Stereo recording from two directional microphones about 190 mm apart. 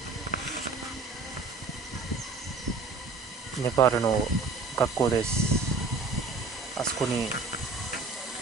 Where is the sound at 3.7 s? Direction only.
15° left (ahead or behind).